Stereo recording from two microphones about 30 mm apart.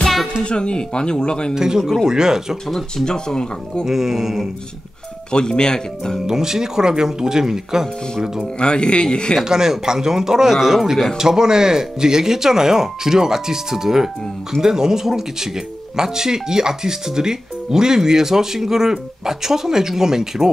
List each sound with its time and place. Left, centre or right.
0.4 s speech: left
1.5 s speech: centre
3.1 s speech: left
3.8 s speech: centre
5.3 s speech: left
6.2 s speech: centre
8.5 s speech: left
9.4 s speech: right